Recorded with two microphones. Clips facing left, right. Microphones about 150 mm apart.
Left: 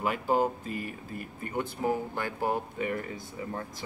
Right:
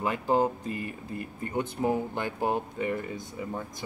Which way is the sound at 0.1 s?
10° left (ahead or behind).